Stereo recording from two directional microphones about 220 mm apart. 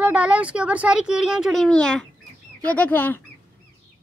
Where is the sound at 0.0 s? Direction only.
5° right (ahead or behind).